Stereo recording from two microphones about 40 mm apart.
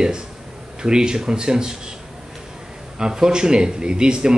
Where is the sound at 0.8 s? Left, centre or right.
Centre.